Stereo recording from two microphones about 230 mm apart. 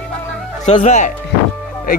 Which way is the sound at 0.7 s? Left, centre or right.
Left.